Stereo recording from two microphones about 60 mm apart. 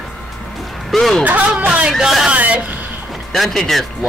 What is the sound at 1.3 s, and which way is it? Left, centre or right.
Speech, right.